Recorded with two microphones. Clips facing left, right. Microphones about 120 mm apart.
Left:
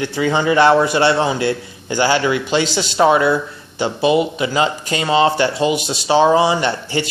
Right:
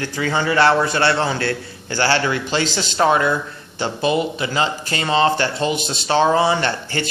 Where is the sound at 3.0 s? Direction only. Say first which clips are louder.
Left 3 dB; 15° left (ahead or behind).